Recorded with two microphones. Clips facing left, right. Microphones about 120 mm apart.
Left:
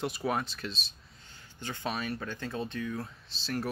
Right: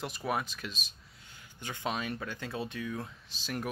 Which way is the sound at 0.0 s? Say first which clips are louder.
Left 2 dB; centre (ahead or behind).